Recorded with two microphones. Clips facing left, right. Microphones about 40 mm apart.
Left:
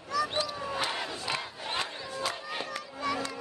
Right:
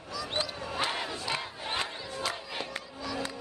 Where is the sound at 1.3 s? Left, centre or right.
Centre.